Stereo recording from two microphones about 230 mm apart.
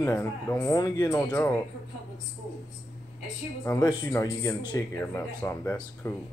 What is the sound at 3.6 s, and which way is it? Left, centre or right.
A man's voice, centre.